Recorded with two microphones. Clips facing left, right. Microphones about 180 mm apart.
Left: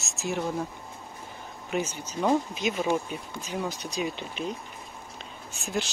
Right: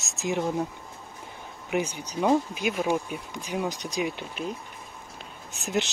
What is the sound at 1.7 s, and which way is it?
Speech, 15° right (ahead or behind).